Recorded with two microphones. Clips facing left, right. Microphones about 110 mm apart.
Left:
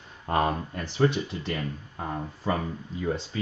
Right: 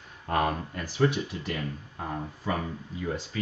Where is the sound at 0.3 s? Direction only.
25° left (ahead or behind).